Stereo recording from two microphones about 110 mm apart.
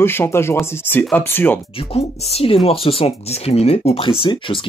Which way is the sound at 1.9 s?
65° left (ahead or behind).